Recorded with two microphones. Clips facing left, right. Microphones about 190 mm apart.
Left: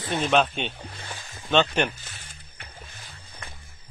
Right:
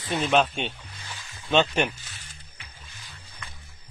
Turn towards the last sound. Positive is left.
turn(degrees=55)  # may be behind; listen again after turning